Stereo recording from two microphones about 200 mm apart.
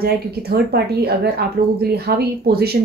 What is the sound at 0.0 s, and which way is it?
Speech, 50° right (ahead or behind).